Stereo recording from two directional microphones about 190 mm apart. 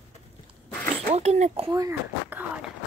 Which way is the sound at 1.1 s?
35° right (ahead or behind).